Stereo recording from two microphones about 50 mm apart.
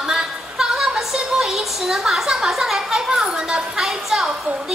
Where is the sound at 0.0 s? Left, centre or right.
Centre.